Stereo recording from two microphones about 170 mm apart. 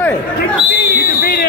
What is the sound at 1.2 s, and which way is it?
Fire alarm, 70° left (ahead or behind).